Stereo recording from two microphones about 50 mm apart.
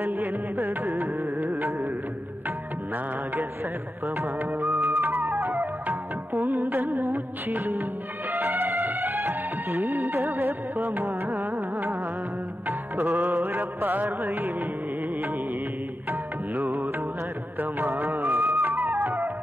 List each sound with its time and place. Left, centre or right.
0.0 s carnatic music: right
4.6 s music: right
4.9 s music: right
16.1 s music: right